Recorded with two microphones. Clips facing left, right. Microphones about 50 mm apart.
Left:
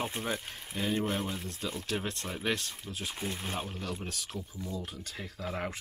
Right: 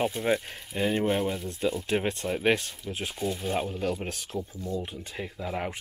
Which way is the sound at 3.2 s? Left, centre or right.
Left.